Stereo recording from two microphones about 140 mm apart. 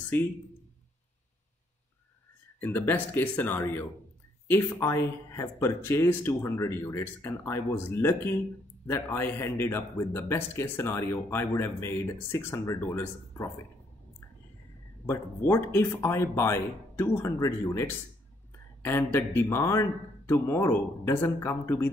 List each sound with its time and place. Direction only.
2.6 s a man's voice: 15° left (ahead or behind)
15.0 s a man's voice: 15° left (ahead or behind)